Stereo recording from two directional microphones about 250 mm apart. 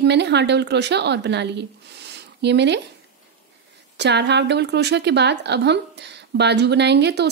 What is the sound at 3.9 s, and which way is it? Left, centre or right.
A woman's voice, right.